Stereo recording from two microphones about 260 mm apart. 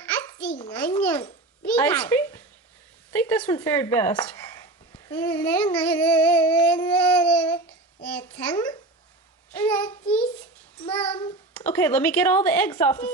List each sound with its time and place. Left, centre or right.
0.4 s a sound: centre
0.8 s a child's voice: centre
6.9 s child singing: centre
9.6 s child singing: centre
11.1 s a child's voice: centre
11.6 s speech: centre